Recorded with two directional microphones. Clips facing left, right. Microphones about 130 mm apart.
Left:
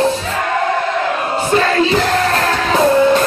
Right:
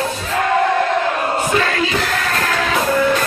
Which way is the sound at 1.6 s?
35° left (ahead or behind).